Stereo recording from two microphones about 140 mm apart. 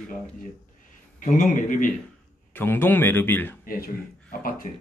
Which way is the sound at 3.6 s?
90° left.